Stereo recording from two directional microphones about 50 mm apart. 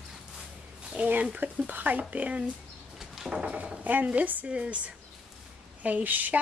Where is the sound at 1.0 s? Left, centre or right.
Right.